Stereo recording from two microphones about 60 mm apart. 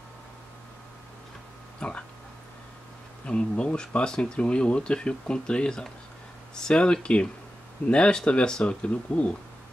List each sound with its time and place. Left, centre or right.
1.8 s speech: centre
3.3 s speech: centre